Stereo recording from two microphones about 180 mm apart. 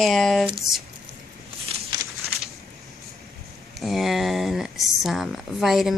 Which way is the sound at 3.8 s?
Centre (ahead or behind).